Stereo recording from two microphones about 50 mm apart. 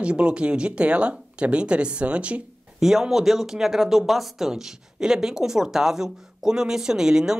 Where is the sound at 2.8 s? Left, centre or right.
Centre.